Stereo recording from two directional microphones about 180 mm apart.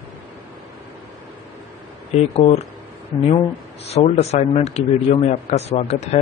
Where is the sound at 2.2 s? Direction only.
40° left (ahead or behind).